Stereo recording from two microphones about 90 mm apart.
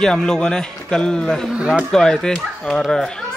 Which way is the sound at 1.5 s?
10° right (ahead or behind).